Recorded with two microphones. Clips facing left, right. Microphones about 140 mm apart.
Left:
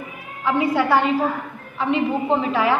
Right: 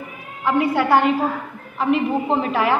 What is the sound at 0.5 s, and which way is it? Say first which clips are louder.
A woman's voice: right 1 dB; centre (ahead or behind).